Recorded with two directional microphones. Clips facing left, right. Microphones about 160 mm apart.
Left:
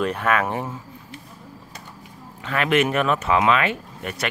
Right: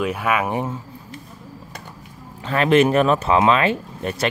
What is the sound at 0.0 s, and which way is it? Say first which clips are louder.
Speech: even; 10° right (ahead or behind).